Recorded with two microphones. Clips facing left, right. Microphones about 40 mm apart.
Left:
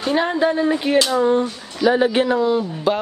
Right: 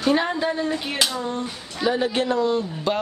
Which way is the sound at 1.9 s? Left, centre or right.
Centre.